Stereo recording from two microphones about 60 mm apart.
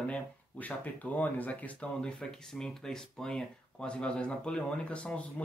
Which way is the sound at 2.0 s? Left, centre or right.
Centre.